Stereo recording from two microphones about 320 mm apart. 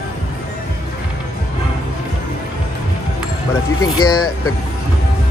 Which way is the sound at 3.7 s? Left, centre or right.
Centre.